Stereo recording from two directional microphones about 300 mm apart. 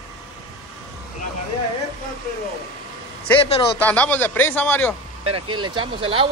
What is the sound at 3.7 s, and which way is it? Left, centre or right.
Speech, centre.